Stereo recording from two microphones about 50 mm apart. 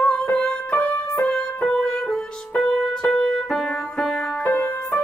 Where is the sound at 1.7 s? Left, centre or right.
Centre.